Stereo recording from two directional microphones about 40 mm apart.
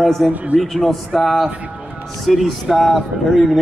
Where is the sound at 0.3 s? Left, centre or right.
Right.